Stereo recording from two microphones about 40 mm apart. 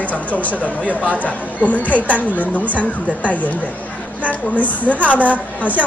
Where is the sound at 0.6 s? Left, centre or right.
Right.